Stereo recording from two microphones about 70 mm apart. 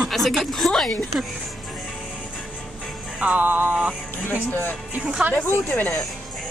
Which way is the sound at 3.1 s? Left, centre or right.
Centre.